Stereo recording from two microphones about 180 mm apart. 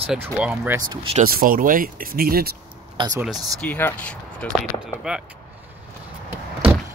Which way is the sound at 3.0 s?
20° right (ahead or behind).